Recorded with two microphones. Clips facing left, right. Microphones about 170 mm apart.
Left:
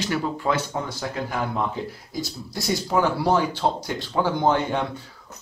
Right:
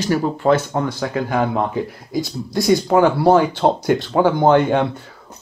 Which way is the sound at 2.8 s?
60° right (ahead or behind).